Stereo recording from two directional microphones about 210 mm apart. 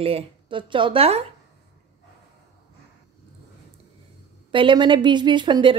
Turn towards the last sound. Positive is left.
turn(degrees=-20)  # may be behind; listen again after turning